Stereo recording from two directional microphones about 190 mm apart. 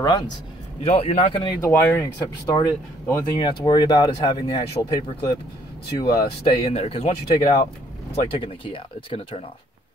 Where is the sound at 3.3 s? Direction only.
25° left (ahead or behind).